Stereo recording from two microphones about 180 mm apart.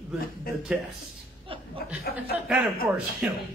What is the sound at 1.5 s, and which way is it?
Chuckle, 30° right (ahead or behind).